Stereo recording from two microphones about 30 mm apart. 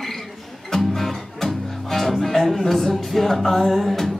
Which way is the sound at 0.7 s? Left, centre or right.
Centre.